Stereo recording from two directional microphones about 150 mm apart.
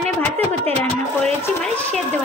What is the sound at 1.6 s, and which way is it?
Speech, 5° left (ahead or behind).